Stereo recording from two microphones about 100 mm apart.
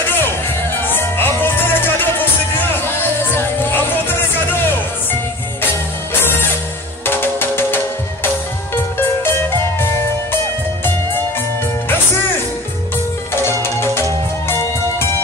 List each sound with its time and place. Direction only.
0.0 s music: 20° left (ahead or behind)
7.1 s music: 20° left (ahead or behind)
13.3 s music: 25° left (ahead or behind)